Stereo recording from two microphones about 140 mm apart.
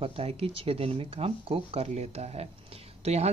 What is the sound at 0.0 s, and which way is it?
Speech, 45° right (ahead or behind).